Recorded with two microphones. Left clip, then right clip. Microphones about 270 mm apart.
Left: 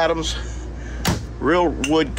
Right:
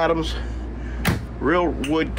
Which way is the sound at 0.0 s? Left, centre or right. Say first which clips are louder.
Left 1 dB; centre.